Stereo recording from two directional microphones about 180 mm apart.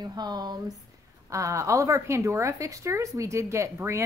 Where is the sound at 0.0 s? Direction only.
20° right (ahead or behind).